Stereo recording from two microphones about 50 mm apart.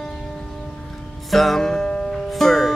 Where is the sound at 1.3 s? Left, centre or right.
Centre.